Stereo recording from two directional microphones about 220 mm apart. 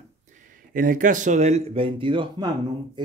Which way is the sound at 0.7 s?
40° right (ahead or behind).